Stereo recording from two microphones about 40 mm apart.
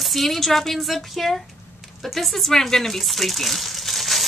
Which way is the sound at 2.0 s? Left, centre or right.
Centre.